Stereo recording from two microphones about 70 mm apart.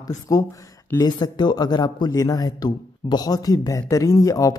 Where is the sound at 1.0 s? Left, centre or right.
Left.